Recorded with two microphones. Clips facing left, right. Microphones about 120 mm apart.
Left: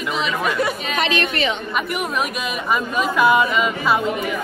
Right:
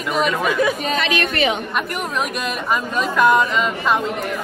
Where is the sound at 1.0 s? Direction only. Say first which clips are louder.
Left 3 dB; 25° left (ahead or behind).